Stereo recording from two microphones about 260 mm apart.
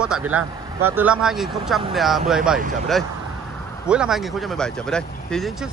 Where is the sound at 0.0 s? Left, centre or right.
Centre.